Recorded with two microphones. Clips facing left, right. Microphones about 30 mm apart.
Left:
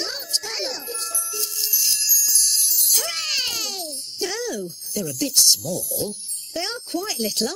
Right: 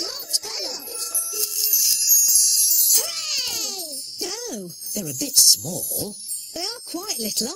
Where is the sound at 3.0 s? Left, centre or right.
Left.